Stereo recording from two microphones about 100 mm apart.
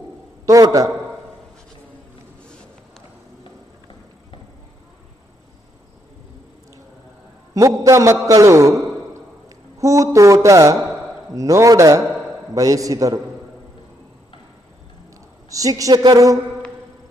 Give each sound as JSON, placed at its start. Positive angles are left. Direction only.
{"t": 0.5, "sound": "a man's voice", "side_deg": -35}
{"t": 7.5, "sound": "a man's voice", "side_deg": -35}
{"t": 15.5, "sound": "a man's voice", "side_deg": -35}